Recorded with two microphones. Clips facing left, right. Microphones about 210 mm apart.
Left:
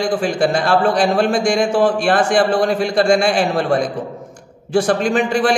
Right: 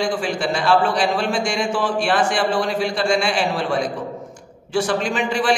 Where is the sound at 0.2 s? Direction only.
45° left (ahead or behind).